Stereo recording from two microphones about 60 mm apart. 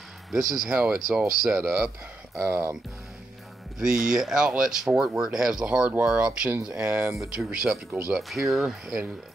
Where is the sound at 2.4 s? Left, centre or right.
Right.